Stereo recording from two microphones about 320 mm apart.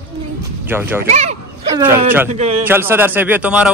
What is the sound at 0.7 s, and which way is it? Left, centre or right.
Speech, centre.